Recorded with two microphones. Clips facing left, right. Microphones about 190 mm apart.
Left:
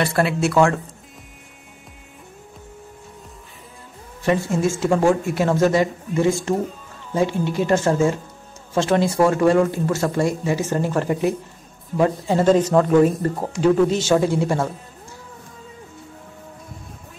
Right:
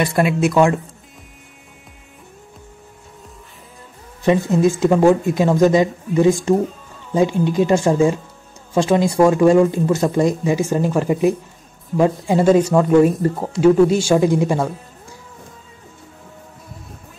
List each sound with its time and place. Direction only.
0.0 s speech: 15° right (ahead or behind)
4.2 s speech: 20° right (ahead or behind)
11.9 s speech: centre (ahead or behind)
12.3 s speech: 10° right (ahead or behind)